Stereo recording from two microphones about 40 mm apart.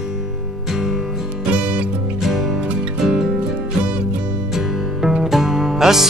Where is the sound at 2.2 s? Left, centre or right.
Centre.